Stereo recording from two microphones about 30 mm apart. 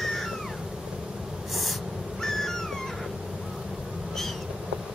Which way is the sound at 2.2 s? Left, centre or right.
Centre.